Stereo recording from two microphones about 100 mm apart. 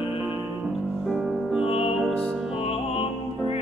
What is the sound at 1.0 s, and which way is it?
Music, centre (ahead or behind).